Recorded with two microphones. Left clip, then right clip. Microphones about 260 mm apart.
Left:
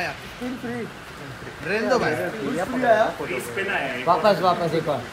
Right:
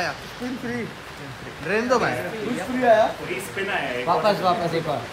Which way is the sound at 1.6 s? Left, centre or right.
Centre.